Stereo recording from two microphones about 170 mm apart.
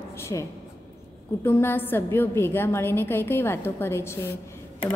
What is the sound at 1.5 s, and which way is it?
A woman's voice, 15° left (ahead or behind).